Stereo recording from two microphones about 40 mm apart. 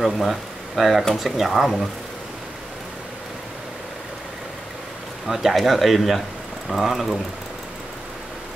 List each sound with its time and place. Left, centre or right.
0.0 s speech: centre
5.3 s speech: centre